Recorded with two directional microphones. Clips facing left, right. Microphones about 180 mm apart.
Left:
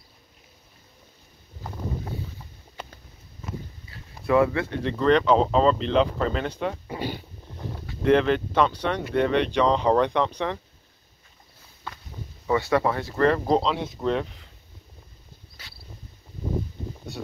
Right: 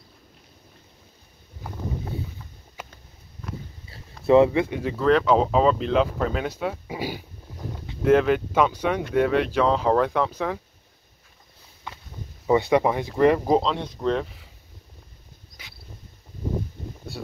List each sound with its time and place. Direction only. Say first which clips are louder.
3.9 s speech: right 5 dB; 25° right (ahead or behind); by 10.6 s 5° right (ahead or behind)
12.4 s speech: right 3 dB; 20° right (ahead or behind)
13.6 s speech: even; centre (ahead or behind)